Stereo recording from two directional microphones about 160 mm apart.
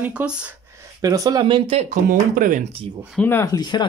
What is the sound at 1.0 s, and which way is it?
Speech, 20° right (ahead or behind).